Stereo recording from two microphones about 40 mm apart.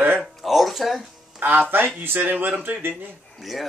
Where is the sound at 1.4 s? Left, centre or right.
Right.